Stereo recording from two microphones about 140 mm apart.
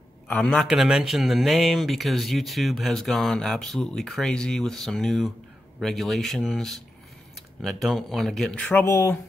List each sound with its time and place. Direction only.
0.3 s speech: 5° left (ahead or behind)
8.6 s speech: 15° left (ahead or behind)